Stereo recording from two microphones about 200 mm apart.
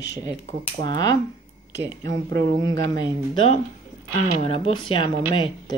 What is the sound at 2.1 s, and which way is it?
Speech, 60° right (ahead or behind).